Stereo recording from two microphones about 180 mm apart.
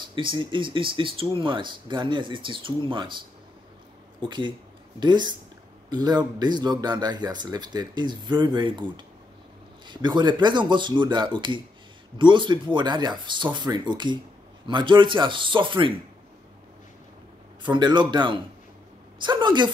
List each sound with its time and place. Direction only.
0.0 s speech: 25° right (ahead or behind)
17.6 s speech: 25° right (ahead or behind)